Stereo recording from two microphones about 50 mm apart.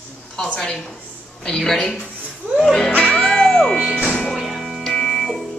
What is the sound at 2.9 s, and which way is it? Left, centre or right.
Music, left.